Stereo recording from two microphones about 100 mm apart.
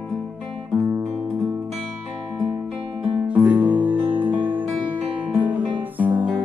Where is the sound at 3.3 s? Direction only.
15° right (ahead or behind).